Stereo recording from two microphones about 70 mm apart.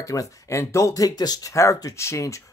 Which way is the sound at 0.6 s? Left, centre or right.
Left.